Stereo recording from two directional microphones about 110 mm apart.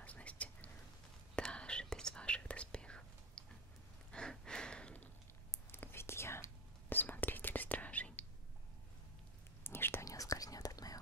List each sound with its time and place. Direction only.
0.0 s whispering: 10° left (ahead or behind)
4.1 s a sound: 5° left (ahead or behind)
5.5 s whispering: 20° left (ahead or behind)
9.6 s whispering: 20° left (ahead or behind)